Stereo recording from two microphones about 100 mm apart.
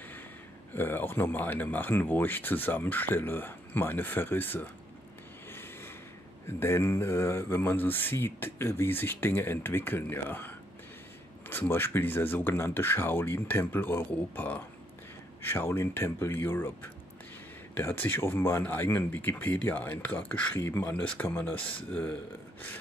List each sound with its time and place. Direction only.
0.7 s speech: 20° left (ahead or behind)
5.5 s a sound: 25° left (ahead or behind)
6.4 s speech: 25° left (ahead or behind)